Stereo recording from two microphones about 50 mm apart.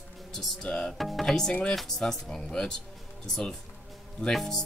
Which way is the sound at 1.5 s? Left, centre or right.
Left.